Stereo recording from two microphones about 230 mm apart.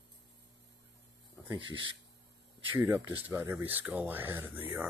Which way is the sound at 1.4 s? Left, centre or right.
Right.